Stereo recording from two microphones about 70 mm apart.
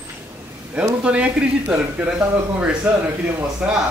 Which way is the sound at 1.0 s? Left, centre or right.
Centre.